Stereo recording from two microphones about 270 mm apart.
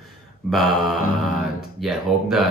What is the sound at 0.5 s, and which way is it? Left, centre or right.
Speech, centre.